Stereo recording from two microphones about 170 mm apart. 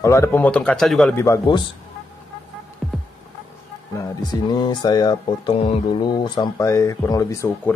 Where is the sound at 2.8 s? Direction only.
Centre (ahead or behind).